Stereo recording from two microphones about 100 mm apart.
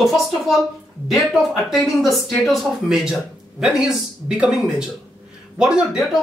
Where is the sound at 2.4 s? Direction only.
5° right (ahead or behind).